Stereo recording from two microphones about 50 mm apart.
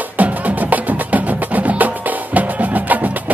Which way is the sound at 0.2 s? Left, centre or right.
Right.